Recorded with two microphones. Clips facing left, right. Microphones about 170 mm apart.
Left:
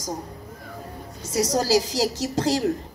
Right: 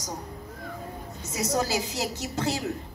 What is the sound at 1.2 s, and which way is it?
Speech, 90° left.